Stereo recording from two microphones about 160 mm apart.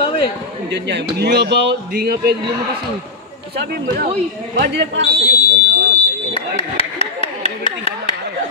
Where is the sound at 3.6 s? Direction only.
75° right (ahead or behind).